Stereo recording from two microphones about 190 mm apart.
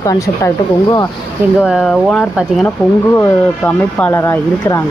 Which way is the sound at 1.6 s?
Centre (ahead or behind).